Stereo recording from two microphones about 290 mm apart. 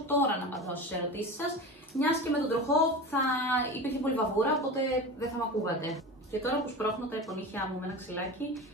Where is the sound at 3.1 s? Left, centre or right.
Centre.